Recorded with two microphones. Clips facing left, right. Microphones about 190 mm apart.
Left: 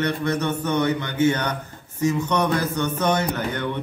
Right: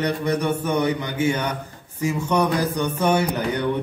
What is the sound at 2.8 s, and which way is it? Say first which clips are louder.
Mantra: right 3 dB; 10° right (ahead or behind).